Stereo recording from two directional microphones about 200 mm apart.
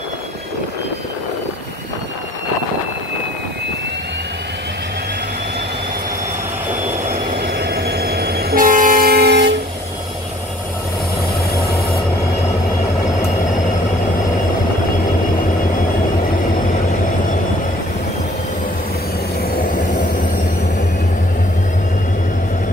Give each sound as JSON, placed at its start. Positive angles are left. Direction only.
{"t": 7.4, "sound": "train", "side_deg": -55}